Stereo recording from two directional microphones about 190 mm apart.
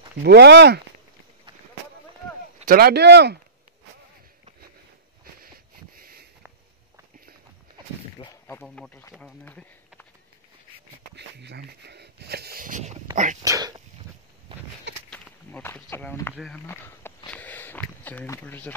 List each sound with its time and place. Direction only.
0.2 s speech: 60° right (ahead or behind)
2.6 s speech: 50° right (ahead or behind)
5.4 s a sound: 50° right (ahead or behind)
8.2 s speech: 15° left (ahead or behind)
11.1 s speech: 65° right (ahead or behind); by 13.0 s 40° right (ahead or behind)
13.4 s speech: 20° right (ahead or behind)
15.0 s speech: 10° left (ahead or behind)
16.6 s a sound: 10° left (ahead or behind)